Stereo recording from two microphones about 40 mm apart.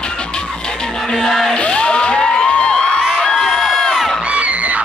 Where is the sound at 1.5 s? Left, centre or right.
Left.